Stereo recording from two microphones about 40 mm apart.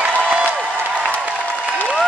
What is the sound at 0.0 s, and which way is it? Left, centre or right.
Applause, right.